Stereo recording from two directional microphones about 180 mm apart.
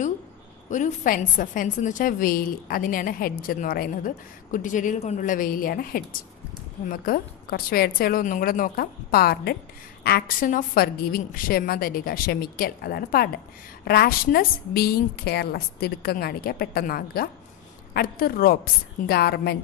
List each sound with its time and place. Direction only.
0.7 s a woman's voice: 45° left (ahead or behind); by 19.6 s 65° left (ahead or behind)